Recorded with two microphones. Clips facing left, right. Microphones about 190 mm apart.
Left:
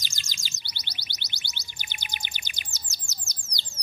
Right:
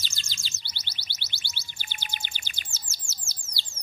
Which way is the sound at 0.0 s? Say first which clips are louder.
Even; 15° left (ahead or behind).